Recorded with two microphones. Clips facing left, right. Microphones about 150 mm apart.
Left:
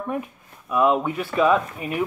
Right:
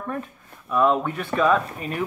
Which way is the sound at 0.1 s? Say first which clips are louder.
Left 3 dB; 10° left (ahead or behind).